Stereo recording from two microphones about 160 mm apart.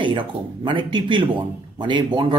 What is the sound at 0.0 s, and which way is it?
A man's voice, 30° right (ahead or behind).